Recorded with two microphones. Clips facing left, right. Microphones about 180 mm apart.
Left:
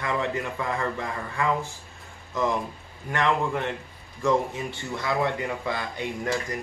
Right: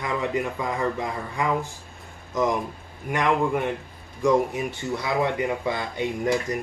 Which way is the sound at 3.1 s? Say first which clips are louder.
Right 2 dB; 15° right (ahead or behind).